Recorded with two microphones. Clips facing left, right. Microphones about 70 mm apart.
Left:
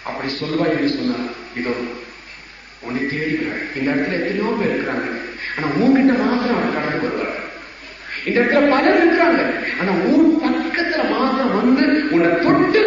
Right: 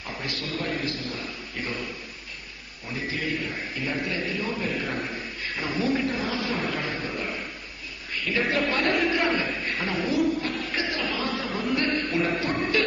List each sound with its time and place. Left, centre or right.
0.0 s a man's voice: left
2.9 s a man's voice: left